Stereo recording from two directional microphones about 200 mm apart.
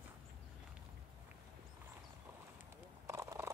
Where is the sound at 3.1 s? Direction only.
15° right (ahead or behind).